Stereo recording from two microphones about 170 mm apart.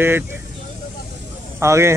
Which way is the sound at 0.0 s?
15° right (ahead or behind).